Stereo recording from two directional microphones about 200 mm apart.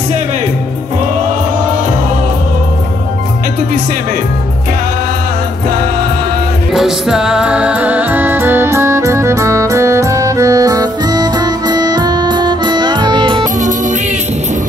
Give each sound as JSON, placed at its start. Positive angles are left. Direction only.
{"t": 6.7, "sound": "music", "side_deg": 0}
{"t": 13.6, "sound": "music", "side_deg": -40}